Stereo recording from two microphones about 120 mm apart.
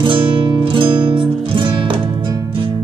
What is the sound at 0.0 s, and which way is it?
Music, 45° right (ahead or behind).